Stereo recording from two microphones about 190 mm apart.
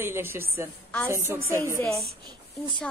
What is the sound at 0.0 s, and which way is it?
A woman's voice, 10° right (ahead or behind).